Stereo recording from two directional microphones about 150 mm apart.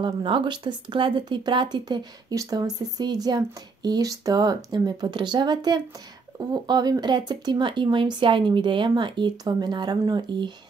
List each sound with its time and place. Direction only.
0.0 s speech: 30° right (ahead or behind)